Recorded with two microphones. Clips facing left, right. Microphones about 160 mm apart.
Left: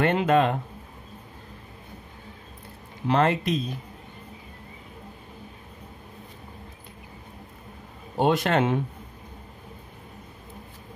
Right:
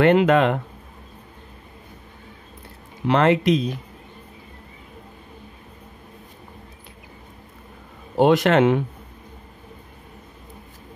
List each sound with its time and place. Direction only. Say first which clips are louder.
0.0 s speech: right 5 dB; 85° right
3.1 s speech: right 5 dB; 90° right
8.2 s speech: right 6 dB; 90° right